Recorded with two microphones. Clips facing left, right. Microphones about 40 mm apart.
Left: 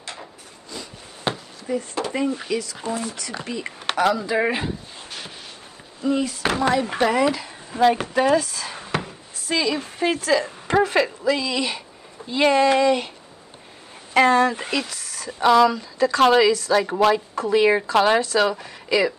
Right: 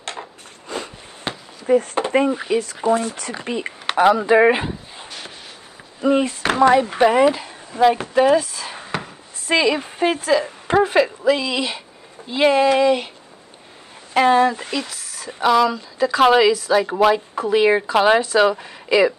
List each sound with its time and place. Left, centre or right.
0.7 s a sound: right
1.3 s a sound: centre
2.0 s speech: right
3.9 s speech: right
5.9 s speech: right
7.0 s speech: centre
7.4 s a sound: centre
9.5 s speech: right
14.1 s speech: centre
14.5 s speech: centre